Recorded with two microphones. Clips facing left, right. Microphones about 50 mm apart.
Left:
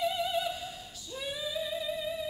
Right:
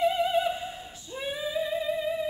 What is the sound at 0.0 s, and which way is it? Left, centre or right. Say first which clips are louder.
Opera: right 6 dB; right.